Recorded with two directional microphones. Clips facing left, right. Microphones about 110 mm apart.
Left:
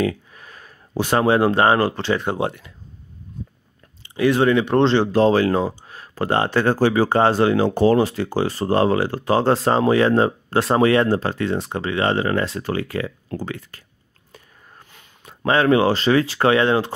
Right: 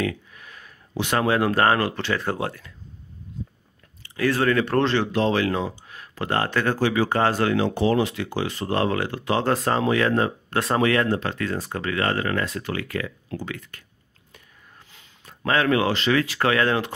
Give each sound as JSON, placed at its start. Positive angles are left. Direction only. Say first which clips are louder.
{"t": 0.0, "sound": "speech", "louder": "left 5 dB", "side_deg": 35}
{"t": 4.0, "sound": "speech", "louder": "left 5 dB", "side_deg": 20}
{"t": 14.8, "sound": "a sound", "louder": "left 5 dB", "side_deg": 50}
{"t": 15.2, "sound": "speech", "louder": "left 5 dB", "side_deg": 30}